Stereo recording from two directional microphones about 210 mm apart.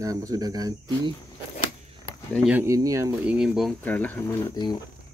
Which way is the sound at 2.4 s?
10° right (ahead or behind).